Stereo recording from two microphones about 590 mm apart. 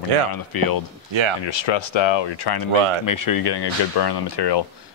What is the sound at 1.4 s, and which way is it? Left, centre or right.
Speech, left.